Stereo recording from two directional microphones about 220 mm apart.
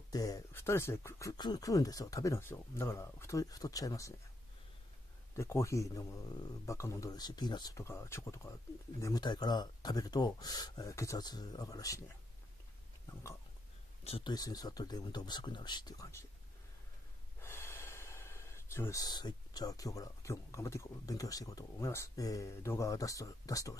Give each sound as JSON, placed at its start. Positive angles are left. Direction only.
{"t": 0.1, "sound": "speech", "side_deg": 15}
{"t": 5.3, "sound": "speech", "side_deg": 10}
{"t": 14.0, "sound": "speech", "side_deg": 25}
{"t": 17.4, "sound": "speech", "side_deg": 10}